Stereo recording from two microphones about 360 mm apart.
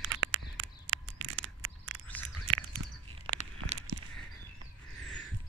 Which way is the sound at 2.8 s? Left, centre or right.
Right.